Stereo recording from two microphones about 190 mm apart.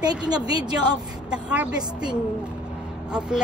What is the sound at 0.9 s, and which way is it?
Speech, 5° right (ahead or behind).